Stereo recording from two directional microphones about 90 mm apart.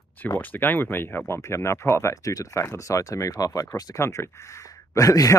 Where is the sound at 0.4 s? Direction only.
20° left (ahead or behind); by 4.0 s 45° left (ahead or behind).